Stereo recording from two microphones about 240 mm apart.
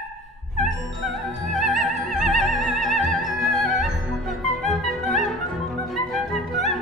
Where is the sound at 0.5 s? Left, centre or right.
Centre.